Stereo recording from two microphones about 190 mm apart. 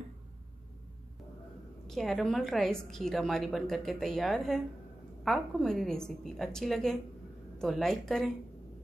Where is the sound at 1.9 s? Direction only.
Centre (ahead or behind).